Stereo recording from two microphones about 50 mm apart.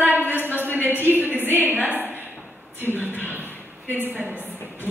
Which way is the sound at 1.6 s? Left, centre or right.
Right.